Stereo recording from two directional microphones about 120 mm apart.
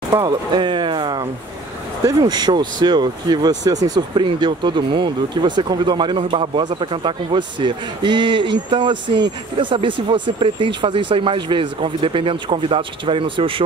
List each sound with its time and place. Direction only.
0.1 s a man's voice: 35° right (ahead or behind)